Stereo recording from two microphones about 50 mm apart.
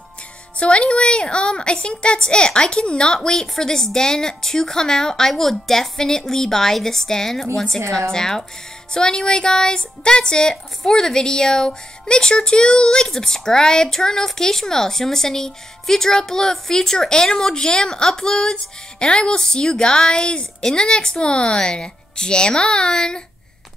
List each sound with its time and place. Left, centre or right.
0.6 s a woman's voice: left